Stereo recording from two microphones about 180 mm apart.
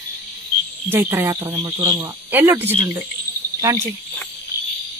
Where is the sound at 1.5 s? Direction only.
25° right (ahead or behind).